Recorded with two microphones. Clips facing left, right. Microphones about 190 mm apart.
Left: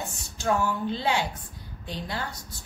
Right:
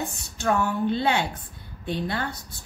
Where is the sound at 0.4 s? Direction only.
60° right (ahead or behind).